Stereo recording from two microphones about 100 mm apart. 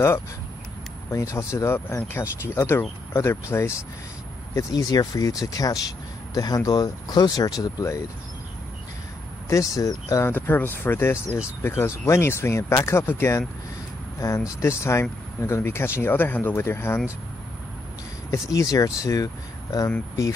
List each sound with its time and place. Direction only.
1.1 s speech: 30° left (ahead or behind)
9.5 s speech: 35° left (ahead or behind)
10.3 s speech: 20° left (ahead or behind)
14.6 s speech: 25° left (ahead or behind)
18.3 s speech: 35° left (ahead or behind)